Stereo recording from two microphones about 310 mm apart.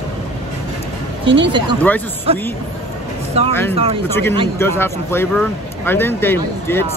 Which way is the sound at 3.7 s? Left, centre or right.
Centre.